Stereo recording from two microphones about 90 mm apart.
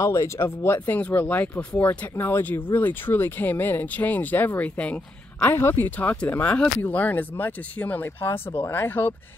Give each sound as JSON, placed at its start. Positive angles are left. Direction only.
{"t": 0.0, "sound": "speech", "side_deg": 35}
{"t": 0.8, "sound": "speech", "side_deg": 20}